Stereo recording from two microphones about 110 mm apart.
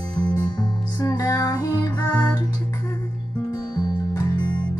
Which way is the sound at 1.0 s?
35° left (ahead or behind).